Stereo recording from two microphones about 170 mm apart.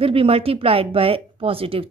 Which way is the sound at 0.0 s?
35° right (ahead or behind).